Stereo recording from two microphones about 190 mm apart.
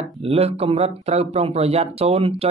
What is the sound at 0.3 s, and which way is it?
Speech, 30° right (ahead or behind).